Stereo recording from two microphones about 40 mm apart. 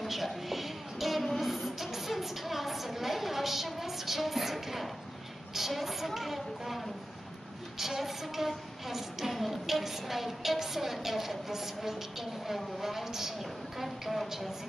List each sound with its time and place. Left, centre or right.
0.0 s child singing: centre
5.5 s a woman's voice: centre